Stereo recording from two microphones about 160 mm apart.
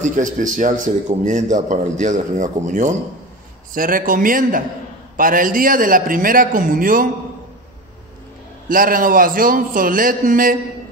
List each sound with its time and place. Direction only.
0.0 s a man's voice: 55° right (ahead or behind)
8.6 s a man's voice: 60° right (ahead or behind)